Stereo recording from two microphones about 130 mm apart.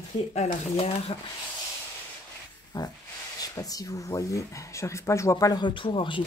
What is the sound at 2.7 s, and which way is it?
Speech, 30° left (ahead or behind).